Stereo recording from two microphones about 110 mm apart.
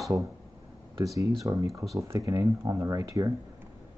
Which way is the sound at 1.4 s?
30° right (ahead or behind).